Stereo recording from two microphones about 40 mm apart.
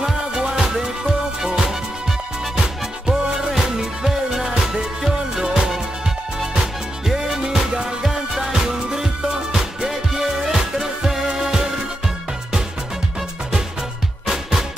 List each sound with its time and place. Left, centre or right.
0.0 s music: centre
14.2 s music: centre